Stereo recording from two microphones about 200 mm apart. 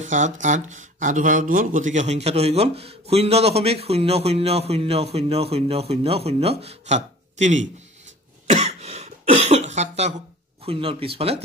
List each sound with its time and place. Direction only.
0.0 s speech: 40° right (ahead or behind)
8.5 s a sound: 35° right (ahead or behind)
10.6 s speech: 30° right (ahead or behind)